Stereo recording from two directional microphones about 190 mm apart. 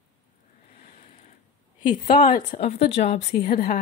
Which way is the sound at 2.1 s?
50° left (ahead or behind).